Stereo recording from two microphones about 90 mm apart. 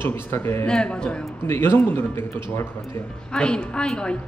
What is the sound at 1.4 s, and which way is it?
Speech, 25° left (ahead or behind).